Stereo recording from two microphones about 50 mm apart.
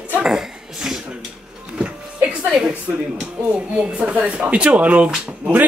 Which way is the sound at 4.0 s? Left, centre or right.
Right.